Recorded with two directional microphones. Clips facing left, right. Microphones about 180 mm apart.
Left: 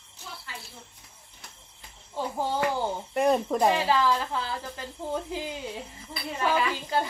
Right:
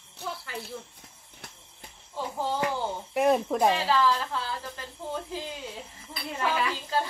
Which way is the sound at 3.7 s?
15° left (ahead or behind).